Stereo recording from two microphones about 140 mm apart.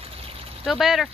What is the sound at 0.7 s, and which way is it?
Speech, centre (ahead or behind).